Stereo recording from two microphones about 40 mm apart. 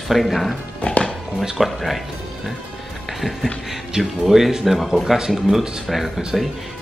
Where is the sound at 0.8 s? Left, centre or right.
Left.